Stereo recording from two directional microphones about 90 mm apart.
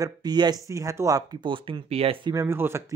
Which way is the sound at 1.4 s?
70° right (ahead or behind).